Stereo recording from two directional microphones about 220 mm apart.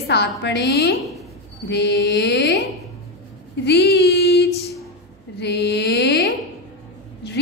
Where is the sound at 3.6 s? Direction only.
45° left (ahead or behind).